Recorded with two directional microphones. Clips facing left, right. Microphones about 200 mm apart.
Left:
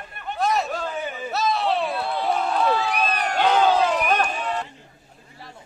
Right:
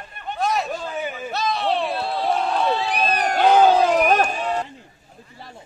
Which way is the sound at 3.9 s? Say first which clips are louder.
Right 4 dB; 40° right (ahead or behind).